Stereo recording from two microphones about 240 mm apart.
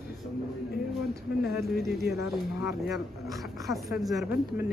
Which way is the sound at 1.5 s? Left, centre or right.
Centre.